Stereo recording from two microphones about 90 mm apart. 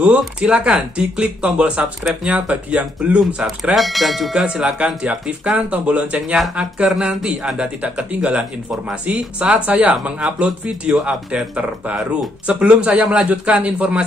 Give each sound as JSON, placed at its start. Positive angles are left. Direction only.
{"t": 0.4, "sound": "speech", "side_deg": -10}
{"t": 3.7, "sound": "speech", "side_deg": 0}